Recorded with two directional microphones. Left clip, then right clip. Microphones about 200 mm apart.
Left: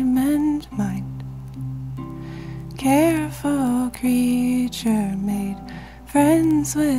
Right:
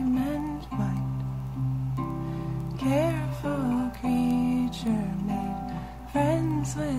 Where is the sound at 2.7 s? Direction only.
50° left (ahead or behind).